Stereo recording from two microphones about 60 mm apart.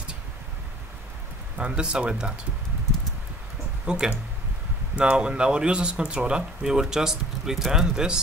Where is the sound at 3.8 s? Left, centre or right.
Centre.